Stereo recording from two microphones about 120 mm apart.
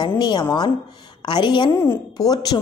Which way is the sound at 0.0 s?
35° left (ahead or behind).